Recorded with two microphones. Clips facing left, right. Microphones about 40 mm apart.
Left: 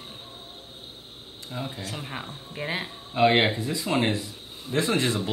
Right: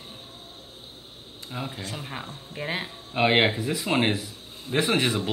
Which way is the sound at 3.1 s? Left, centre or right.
Right.